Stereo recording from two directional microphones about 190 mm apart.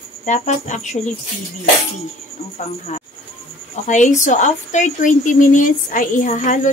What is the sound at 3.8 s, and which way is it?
Speech, 40° left (ahead or behind).